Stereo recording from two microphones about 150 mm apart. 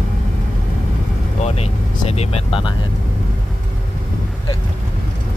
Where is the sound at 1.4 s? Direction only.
45° left (ahead or behind).